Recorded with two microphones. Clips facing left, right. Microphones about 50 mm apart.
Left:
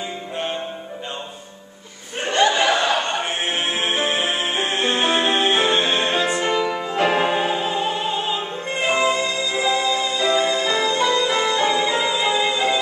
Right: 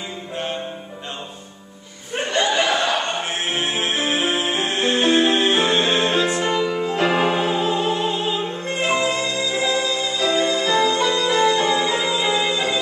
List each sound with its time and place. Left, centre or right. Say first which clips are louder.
2.7 s music: left 1 dB; centre